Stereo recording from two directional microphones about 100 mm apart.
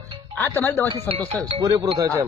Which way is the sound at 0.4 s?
20° left (ahead or behind).